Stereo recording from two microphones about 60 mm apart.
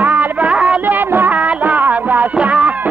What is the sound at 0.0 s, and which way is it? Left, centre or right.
Music, right.